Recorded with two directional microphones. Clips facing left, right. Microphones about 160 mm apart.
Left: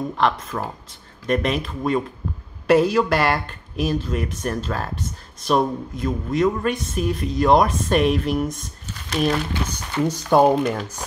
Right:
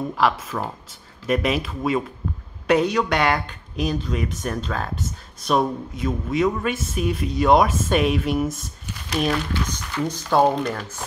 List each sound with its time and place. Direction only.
0.1 s speech: centre (ahead or behind)
9.6 s speech: 25° left (ahead or behind)
10.0 s speech: 15° left (ahead or behind)